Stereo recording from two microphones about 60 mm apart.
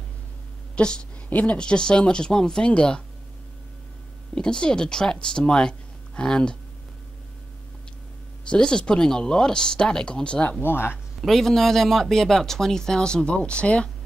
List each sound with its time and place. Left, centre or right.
0.7 s speech: centre
4.4 s speech: centre
8.5 s speech: centre
10.6 s speech: left
11.1 s speech: centre